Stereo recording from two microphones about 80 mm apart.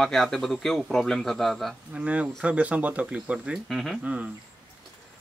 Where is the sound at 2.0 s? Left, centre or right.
Centre.